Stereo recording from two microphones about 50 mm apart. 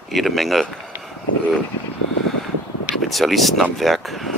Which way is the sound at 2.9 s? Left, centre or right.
Centre.